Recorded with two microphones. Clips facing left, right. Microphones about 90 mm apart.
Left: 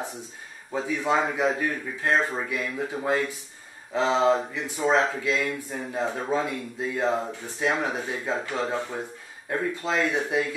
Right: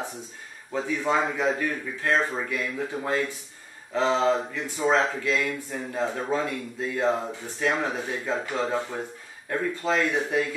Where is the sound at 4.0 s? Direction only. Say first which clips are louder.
Left 1 dB; 15° left (ahead or behind).